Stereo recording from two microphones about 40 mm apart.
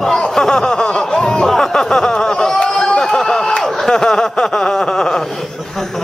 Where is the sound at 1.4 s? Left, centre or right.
Centre.